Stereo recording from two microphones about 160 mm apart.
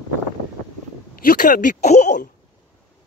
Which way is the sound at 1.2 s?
60° left (ahead or behind).